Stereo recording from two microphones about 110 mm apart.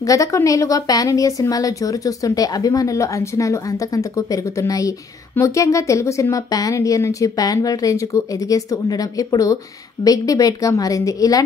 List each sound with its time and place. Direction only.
0.0 s a woman's voice: 30° left (ahead or behind)